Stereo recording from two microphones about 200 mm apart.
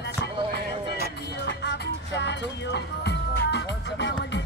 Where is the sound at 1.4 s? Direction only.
60° left (ahead or behind).